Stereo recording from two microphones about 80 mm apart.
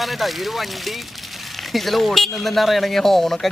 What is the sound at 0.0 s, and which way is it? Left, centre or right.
Speech, centre.